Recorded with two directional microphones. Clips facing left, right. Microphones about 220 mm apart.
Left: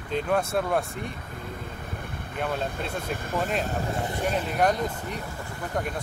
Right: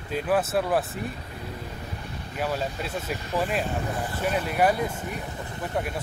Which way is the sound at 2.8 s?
50° left (ahead or behind).